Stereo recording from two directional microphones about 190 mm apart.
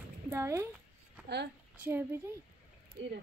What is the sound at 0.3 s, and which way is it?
Speech, 15° right (ahead or behind).